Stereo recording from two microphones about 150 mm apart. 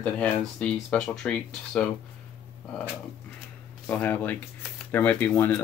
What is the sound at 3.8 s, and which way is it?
Speech, 10° left (ahead or behind).